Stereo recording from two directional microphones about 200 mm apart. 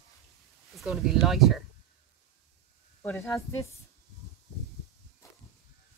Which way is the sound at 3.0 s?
15° left (ahead or behind).